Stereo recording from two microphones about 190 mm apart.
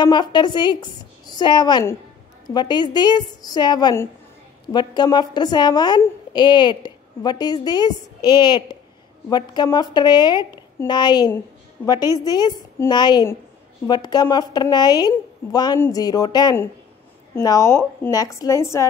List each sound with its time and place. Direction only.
0.0 s a woman's voice: 25° left (ahead or behind)